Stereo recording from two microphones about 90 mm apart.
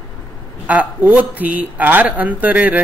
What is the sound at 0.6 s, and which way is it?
Speech, 15° right (ahead or behind).